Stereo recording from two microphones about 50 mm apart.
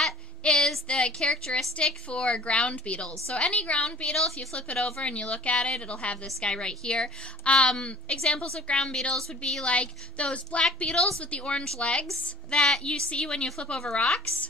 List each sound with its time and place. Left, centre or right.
0.4 s a sound: left
0.8 s a woman's voice: left
9.7 s a woman's voice: left
12.4 s a woman's voice: centre